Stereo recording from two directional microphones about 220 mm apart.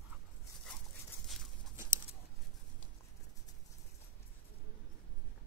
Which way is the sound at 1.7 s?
10° right (ahead or behind).